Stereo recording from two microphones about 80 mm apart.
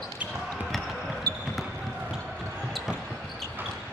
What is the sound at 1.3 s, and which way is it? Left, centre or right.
Basketball bounce, right.